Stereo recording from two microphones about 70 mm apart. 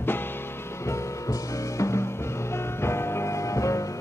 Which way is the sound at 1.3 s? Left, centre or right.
Left.